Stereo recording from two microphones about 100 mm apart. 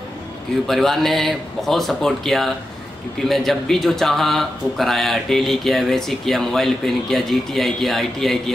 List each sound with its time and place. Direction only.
0.7 s speech: centre (ahead or behind)